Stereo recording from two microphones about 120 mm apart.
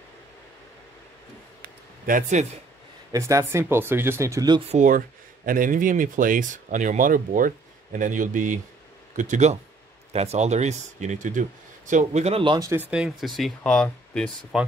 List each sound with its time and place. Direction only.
2.1 s speech: 90° right
3.1 s speech: 25° right (ahead or behind)
4.8 s speech: 90° right
10.1 s speech: 65° right (ahead or behind)
12.5 s speech: 25° right (ahead or behind)
12.9 s speech: 5° right (ahead or behind)
14.5 s speech: 5° right (ahead or behind)